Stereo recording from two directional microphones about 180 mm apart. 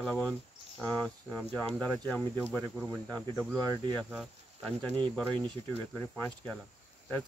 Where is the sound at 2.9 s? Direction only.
15° right (ahead or behind).